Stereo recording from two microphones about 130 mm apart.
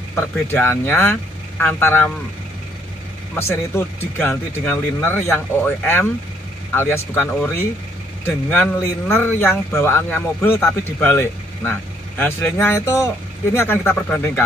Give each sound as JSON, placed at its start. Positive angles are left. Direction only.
{"t": 0.1, "sound": "speech", "side_deg": 15}
{"t": 3.3, "sound": "speech", "side_deg": 20}